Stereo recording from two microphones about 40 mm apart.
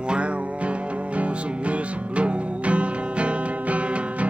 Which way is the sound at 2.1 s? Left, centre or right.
Right.